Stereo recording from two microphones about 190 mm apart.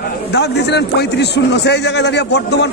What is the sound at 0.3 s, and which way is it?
A man's voice, 65° left (ahead or behind).